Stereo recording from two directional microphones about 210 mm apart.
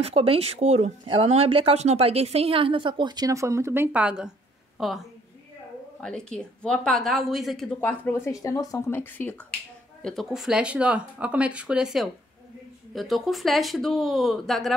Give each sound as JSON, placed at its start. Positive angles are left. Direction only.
{"t": 0.0, "sound": "a woman's voice", "side_deg": -25}
{"t": 6.0, "sound": "speech", "side_deg": 5}